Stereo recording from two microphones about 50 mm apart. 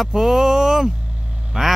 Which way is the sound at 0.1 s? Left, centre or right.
Centre.